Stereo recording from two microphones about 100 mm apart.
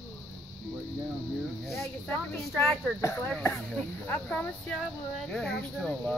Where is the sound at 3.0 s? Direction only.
25° left (ahead or behind).